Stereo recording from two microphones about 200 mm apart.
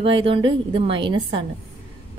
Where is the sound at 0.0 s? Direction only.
25° right (ahead or behind).